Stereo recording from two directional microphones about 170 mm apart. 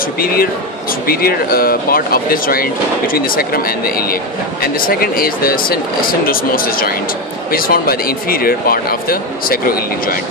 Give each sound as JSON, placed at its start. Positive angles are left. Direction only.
{"t": 0.2, "sound": "speech", "side_deg": 60}